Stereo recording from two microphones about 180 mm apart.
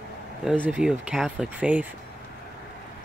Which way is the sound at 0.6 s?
5° right (ahead or behind).